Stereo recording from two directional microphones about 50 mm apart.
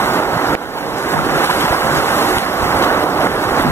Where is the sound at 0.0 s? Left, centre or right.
Left.